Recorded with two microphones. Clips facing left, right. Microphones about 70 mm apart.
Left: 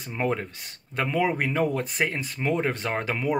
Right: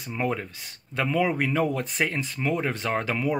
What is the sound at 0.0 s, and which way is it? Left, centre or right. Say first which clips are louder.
Speech: left 1 dB; left.